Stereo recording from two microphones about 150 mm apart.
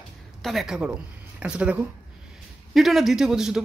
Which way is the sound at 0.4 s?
Centre (ahead or behind).